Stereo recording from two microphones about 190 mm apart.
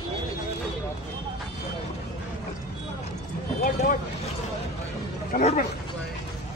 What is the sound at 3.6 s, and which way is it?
Speech, 45° left (ahead or behind).